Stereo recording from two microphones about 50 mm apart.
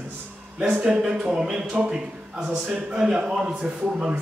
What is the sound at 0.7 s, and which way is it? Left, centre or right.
Speech, right.